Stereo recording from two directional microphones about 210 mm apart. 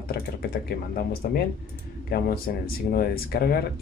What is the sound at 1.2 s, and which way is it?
Speech, 45° left (ahead or behind).